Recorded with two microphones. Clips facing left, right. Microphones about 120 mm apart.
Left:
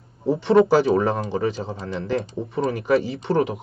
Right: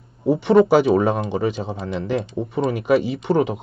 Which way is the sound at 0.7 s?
20° right (ahead or behind).